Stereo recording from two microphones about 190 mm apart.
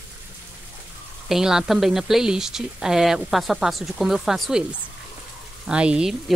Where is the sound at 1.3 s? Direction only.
5° right (ahead or behind).